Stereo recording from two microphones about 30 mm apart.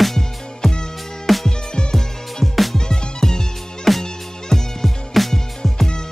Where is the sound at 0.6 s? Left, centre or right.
Centre.